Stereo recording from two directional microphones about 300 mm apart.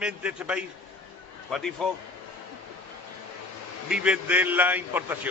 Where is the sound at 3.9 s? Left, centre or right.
Centre.